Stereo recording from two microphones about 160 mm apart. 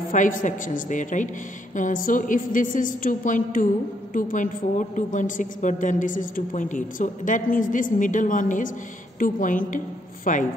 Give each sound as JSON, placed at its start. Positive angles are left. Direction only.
{"t": 0.1, "sound": "a woman's voice", "side_deg": 55}